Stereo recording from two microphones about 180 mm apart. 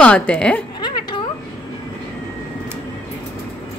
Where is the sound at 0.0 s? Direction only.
5° left (ahead or behind).